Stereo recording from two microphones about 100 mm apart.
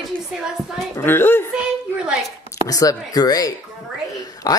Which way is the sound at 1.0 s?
20° left (ahead or behind).